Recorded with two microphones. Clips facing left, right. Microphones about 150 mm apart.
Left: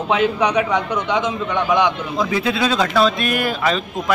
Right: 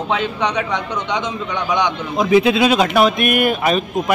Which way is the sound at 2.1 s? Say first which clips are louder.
Right 6 dB; 20° right (ahead or behind).